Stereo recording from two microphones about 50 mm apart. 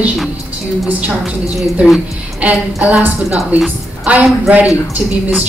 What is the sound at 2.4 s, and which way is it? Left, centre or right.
Speech, right.